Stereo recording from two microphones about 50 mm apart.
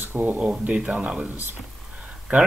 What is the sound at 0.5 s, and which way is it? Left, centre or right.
Speech, right.